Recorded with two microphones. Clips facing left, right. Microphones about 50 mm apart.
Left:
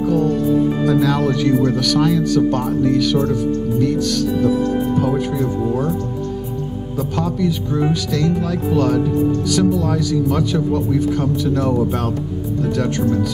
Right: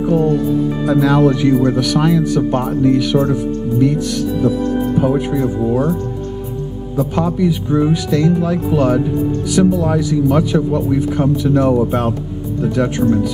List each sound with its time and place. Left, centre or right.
0.0 s a man's voice: right
7.2 s a man's voice: centre